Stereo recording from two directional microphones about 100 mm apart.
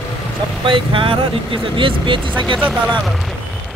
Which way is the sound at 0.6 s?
60° right (ahead or behind).